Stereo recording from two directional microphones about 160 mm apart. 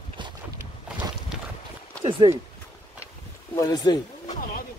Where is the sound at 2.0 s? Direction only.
35° right (ahead or behind).